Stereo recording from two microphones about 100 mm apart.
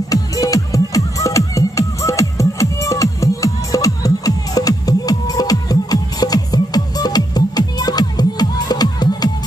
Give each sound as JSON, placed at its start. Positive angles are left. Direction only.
{"t": 0.1, "sound": "music", "side_deg": 35}